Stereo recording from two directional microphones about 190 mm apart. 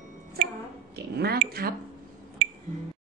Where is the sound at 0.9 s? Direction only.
55° right (ahead or behind).